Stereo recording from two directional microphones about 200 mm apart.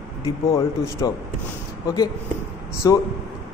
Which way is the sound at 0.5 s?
15° left (ahead or behind).